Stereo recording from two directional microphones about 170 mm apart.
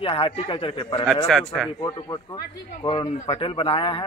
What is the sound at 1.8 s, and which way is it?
A man's voice, 20° left (ahead or behind).